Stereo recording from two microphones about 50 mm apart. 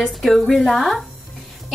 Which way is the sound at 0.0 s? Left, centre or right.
Centre.